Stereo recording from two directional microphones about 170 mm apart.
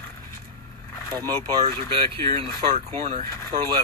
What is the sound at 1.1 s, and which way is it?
Speech, 25° right (ahead or behind).